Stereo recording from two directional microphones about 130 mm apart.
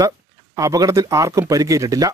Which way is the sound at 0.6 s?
25° right (ahead or behind).